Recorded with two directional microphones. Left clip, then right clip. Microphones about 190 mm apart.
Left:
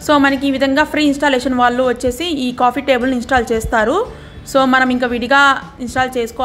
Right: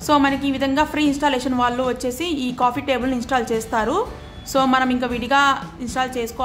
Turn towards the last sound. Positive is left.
turn(degrees=15)  # may be behind; listen again after turning